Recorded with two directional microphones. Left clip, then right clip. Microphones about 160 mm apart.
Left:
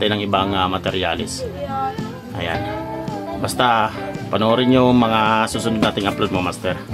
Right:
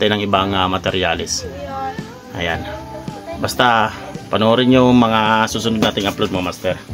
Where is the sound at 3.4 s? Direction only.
20° right (ahead or behind).